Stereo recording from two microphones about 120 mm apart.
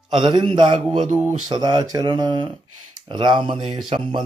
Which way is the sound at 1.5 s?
35° right (ahead or behind).